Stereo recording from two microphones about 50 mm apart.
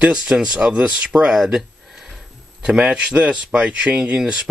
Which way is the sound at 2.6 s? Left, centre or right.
Centre.